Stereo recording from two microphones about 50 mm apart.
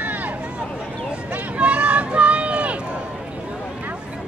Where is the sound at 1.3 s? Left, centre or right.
Right.